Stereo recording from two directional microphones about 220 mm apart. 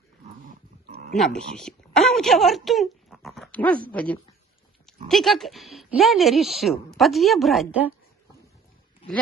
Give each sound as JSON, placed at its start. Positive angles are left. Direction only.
{"t": 0.8, "sound": "dog", "side_deg": -45}
{"t": 1.1, "sound": "speech", "side_deg": 0}